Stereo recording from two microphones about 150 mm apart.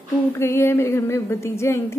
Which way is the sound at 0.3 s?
15° left (ahead or behind).